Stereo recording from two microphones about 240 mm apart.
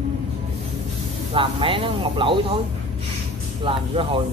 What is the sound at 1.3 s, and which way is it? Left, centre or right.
Speech, right.